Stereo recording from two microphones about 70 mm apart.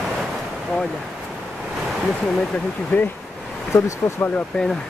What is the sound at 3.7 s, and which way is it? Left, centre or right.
Speech, left.